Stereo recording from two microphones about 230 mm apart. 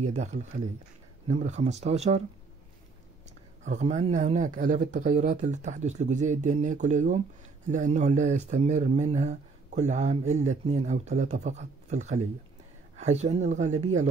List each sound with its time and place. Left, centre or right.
0.0 s speech: right
3.6 s speech: right